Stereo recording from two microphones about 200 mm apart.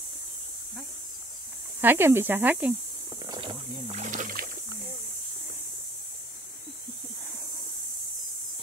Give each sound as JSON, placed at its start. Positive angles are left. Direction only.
{"t": 1.8, "sound": "speech", "side_deg": -10}
{"t": 3.3, "sound": "a sound", "side_deg": -25}
{"t": 3.8, "sound": "rowboat", "side_deg": -35}